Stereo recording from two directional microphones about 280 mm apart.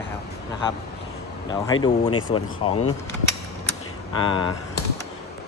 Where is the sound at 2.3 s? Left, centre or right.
Left.